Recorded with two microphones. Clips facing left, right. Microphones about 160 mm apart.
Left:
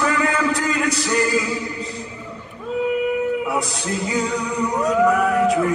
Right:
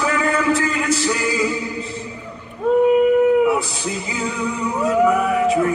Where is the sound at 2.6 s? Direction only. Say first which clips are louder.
Right 8 dB; 55° right (ahead or behind).